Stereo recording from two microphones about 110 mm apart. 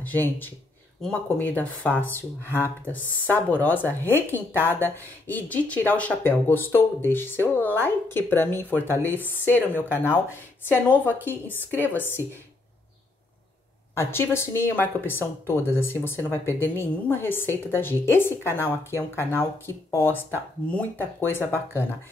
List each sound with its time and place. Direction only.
0.0 s speech: 15° left (ahead or behind)
10.9 s speech: 15° left (ahead or behind)
13.9 s speech: 20° left (ahead or behind)